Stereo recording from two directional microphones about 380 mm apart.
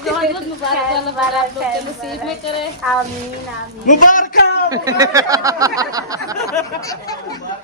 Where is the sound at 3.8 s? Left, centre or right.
Centre.